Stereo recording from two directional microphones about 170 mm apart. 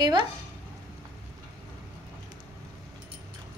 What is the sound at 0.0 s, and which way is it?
Speech, 25° right (ahead or behind).